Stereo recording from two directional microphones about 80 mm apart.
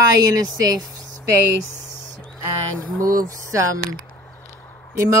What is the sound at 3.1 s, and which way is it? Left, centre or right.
Speech, right.